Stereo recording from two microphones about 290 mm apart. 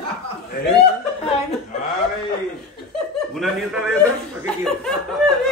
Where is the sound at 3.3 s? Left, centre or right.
Centre.